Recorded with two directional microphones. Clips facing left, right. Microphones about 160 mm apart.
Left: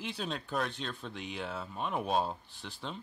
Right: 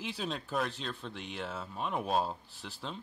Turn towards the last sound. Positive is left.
turn(degrees=0)  # may be behind; listen again after turning